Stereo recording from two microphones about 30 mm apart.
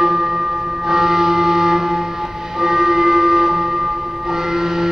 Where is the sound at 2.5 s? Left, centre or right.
Centre.